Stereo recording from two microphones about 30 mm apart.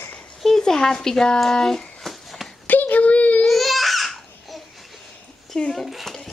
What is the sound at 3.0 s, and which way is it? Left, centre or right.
Baby cry, left.